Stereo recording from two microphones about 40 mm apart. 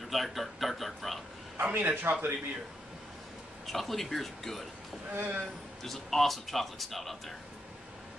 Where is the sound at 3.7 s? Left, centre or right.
Centre.